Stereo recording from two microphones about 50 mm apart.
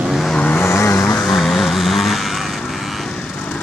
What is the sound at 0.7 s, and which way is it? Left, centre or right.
Vehicle, left.